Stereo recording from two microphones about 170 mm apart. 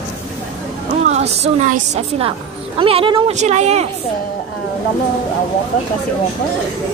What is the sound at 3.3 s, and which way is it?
Speech, 40° right (ahead or behind).